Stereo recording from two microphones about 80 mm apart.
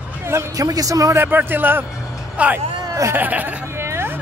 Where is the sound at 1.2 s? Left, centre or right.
Right.